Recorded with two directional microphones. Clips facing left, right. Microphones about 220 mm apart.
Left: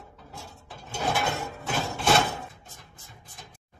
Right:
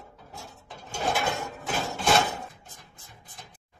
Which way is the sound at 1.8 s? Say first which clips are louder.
Even; centre (ahead or behind).